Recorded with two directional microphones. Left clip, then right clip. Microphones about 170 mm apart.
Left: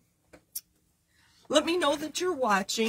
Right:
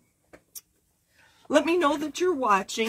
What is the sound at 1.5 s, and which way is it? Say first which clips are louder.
Speech: right 3 dB; 10° right (ahead or behind).